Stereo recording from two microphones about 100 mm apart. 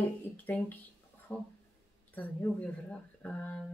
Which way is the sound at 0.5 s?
15° left (ahead or behind).